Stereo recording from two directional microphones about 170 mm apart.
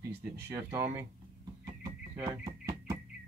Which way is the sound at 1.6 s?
20° right (ahead or behind).